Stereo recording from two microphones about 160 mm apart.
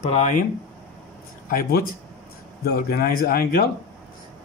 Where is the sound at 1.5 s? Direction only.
65° left (ahead or behind).